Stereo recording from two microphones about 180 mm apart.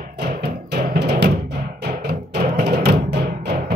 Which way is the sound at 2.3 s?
65° right (ahead or behind).